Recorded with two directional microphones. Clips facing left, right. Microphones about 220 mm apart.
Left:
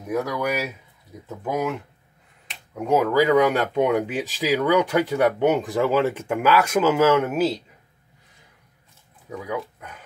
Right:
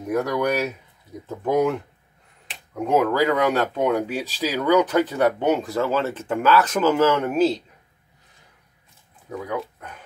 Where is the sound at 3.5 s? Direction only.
15° left (ahead or behind).